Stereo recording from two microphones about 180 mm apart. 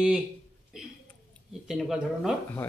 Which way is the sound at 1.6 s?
Centre (ahead or behind).